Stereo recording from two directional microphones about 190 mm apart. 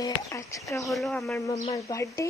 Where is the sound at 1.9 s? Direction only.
20° left (ahead or behind).